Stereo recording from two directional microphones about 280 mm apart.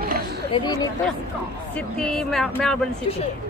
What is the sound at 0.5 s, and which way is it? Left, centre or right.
Speech, centre.